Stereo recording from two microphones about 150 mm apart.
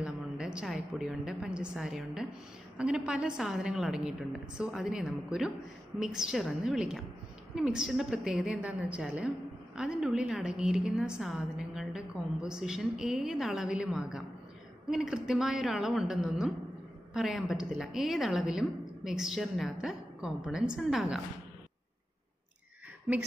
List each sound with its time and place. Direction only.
0.0 s a woman's voice: 5° right (ahead or behind)